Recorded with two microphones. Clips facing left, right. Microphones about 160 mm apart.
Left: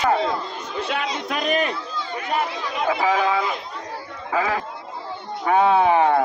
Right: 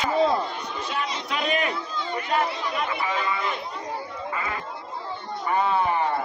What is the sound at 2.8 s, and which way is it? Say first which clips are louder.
Speech: left 10 dB; 90° left.